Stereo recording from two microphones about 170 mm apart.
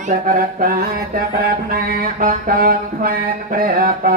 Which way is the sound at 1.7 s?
55° right (ahead or behind).